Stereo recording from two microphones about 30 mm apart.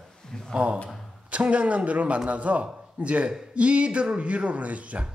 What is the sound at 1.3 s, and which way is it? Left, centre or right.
A man's voice, right.